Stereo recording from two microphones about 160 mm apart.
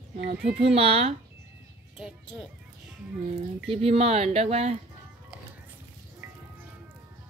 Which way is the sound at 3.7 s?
40° right (ahead or behind).